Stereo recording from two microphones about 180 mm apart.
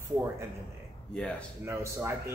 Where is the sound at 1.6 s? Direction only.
15° right (ahead or behind).